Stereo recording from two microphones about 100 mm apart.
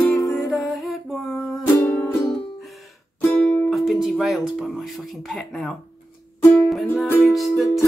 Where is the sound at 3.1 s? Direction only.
15° left (ahead or behind).